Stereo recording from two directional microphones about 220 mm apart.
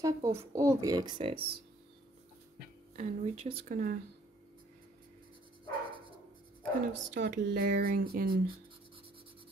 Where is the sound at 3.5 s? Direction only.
40° right (ahead or behind).